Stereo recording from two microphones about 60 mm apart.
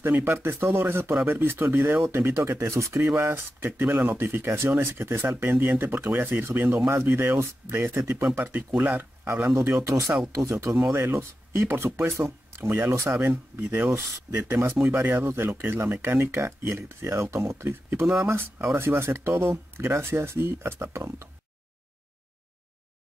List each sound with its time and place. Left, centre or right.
0.0 s speech: right
2.0 s speech: right
3.2 s speech: right
8.4 s speech: right
9.5 s speech: right
10.9 s speech: right
12.9 s speech: right
14.5 s speech: right